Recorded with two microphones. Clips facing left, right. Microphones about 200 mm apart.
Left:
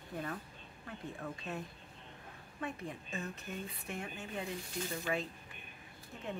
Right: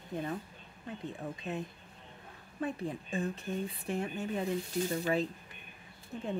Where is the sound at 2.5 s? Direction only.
35° right (ahead or behind).